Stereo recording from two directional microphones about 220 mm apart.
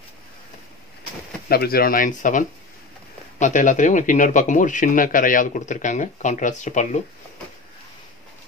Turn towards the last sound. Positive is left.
turn(degrees=35)  # may be behind; listen again after turning